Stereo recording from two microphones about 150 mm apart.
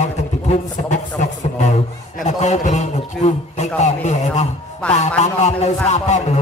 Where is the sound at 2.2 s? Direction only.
50° left (ahead or behind).